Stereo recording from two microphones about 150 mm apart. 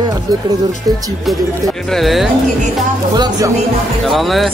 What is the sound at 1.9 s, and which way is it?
Speech, centre (ahead or behind).